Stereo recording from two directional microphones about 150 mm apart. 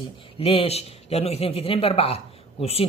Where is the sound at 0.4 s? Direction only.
40° left (ahead or behind).